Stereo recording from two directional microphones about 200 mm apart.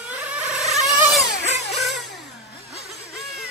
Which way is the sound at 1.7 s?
Centre (ahead or behind).